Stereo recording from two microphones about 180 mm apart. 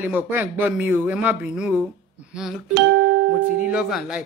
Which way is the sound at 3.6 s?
5° right (ahead or behind).